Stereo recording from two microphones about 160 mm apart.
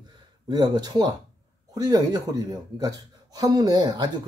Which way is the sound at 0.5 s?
25° right (ahead or behind).